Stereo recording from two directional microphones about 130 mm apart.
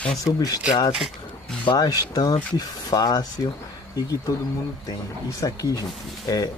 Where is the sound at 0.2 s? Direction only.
30° left (ahead or behind).